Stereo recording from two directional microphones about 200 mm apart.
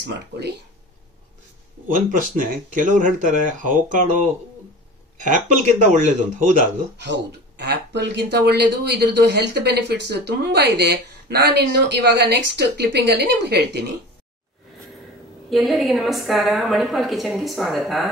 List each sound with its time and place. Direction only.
0.0 s speech: 55° right (ahead or behind)
1.9 s speech: 40° right (ahead or behind)
5.8 s speech: 35° right (ahead or behind)
7.0 s speech: 60° right (ahead or behind)
15.5 s a woman's voice: centre (ahead or behind)